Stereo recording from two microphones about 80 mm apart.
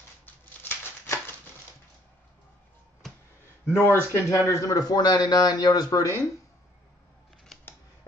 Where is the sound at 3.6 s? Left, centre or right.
Left.